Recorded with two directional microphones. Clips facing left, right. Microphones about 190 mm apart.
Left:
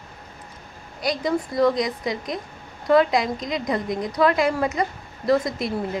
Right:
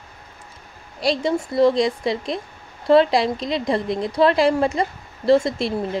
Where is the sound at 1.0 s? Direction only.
30° right (ahead or behind).